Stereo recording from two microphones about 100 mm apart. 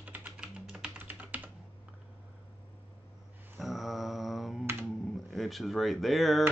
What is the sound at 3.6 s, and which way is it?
Mantra, centre (ahead or behind).